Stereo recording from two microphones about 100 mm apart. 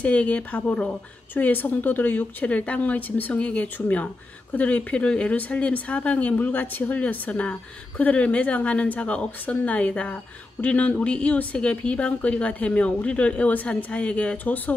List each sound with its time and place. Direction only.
0.0 s speech: 10° left (ahead or behind)